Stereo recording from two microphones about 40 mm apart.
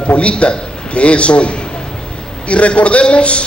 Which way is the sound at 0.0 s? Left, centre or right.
Left.